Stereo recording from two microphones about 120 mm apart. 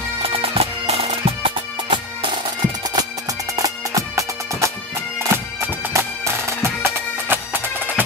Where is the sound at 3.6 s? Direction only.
25° right (ahead or behind).